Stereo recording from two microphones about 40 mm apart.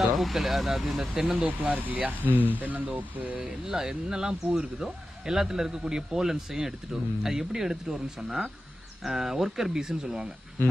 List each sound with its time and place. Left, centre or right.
0.0 s speech: centre
1.3 s speech: right
1.8 s speech: right
3.4 s a man's voice: centre